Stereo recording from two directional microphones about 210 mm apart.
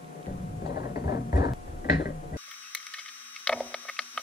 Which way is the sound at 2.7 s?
5° left (ahead or behind).